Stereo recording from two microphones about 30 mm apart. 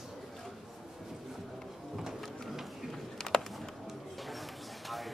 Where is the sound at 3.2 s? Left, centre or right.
Left.